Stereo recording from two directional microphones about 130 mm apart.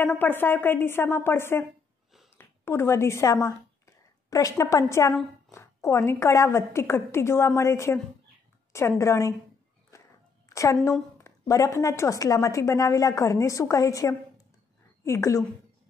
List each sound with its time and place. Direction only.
0.0 s a woman's voice: 15° left (ahead or behind)
9.9 s walk: 25° left (ahead or behind)
10.5 s a woman's voice: 25° left (ahead or behind)